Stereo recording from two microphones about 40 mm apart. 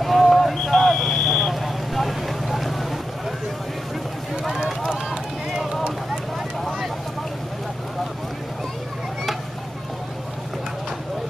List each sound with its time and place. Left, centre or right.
0.2 s vehicle: centre
4.5 s run: centre